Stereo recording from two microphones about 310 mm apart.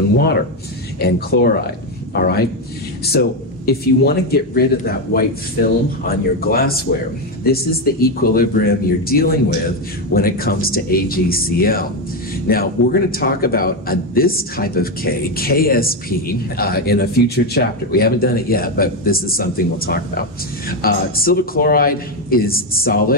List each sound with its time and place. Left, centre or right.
1.0 s a man's voice: left